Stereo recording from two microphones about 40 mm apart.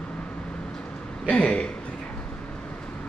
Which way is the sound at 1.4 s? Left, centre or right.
Left.